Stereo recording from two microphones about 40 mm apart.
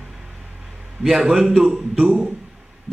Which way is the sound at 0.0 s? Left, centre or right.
Centre.